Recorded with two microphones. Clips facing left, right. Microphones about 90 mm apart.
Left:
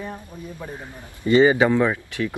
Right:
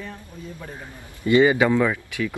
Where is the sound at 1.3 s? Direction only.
25° left (ahead or behind).